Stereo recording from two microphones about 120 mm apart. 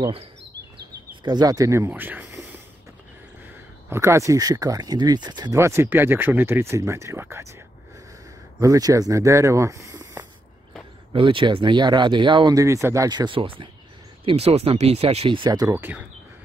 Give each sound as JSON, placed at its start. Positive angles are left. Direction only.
{"t": 1.2, "sound": "speech", "side_deg": -35}
{"t": 3.9, "sound": "speech", "side_deg": -25}
{"t": 5.5, "sound": "speech", "side_deg": -25}
{"t": 8.5, "sound": "speech", "side_deg": -30}
{"t": 11.1, "sound": "speech", "side_deg": -45}
{"t": 14.2, "sound": "speech", "side_deg": -60}
{"t": 15.7, "sound": "speech", "side_deg": -15}